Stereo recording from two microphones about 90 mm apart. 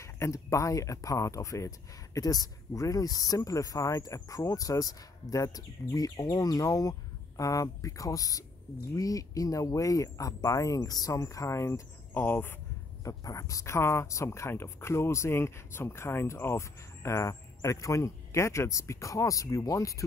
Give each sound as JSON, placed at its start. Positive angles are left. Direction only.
{"t": 0.0, "sound": "speech", "side_deg": 35}
{"t": 12.1, "sound": "speech", "side_deg": 20}
{"t": 13.0, "sound": "speech", "side_deg": 40}